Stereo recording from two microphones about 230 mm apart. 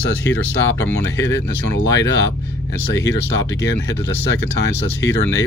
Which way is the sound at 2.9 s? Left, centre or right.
Left.